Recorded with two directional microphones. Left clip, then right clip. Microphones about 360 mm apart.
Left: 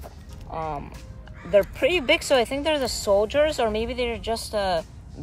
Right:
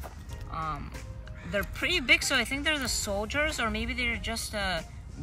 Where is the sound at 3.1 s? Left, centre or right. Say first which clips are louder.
Left 10 dB; centre.